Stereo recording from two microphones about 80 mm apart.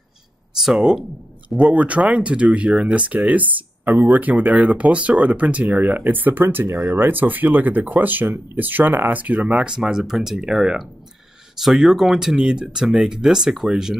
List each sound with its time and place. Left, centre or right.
0.6 s speech: centre
1.6 s speech: centre